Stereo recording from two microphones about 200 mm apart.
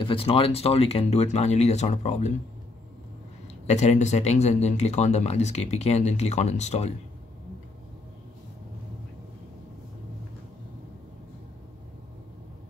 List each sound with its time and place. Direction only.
0.0 s speech: 25° left (ahead or behind)
3.6 s speech: 35° left (ahead or behind)